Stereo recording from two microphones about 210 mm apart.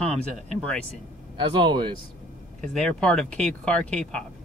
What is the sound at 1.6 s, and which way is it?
Speech, 20° right (ahead or behind).